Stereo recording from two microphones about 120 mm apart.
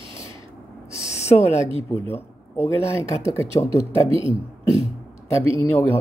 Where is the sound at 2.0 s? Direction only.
20° left (ahead or behind).